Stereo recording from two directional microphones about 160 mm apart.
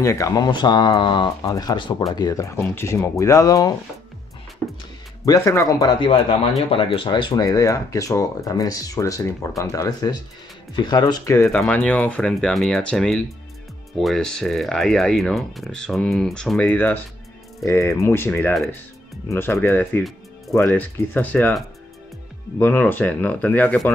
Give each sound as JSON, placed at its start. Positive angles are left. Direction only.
{"t": 0.0, "sound": "speech", "side_deg": 20}
{"t": 5.2, "sound": "speech", "side_deg": 20}
{"t": 11.5, "sound": "speech", "side_deg": 5}
{"t": 22.6, "sound": "speech", "side_deg": 10}